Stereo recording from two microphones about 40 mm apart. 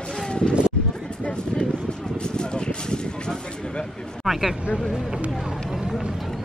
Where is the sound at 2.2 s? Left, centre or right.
Left.